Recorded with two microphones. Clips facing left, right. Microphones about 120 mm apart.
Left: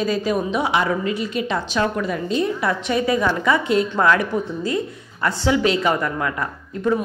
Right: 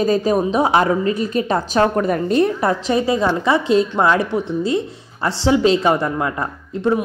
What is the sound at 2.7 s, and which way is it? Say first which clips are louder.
A woman's voice: right 3 dB; 30° right (ahead or behind).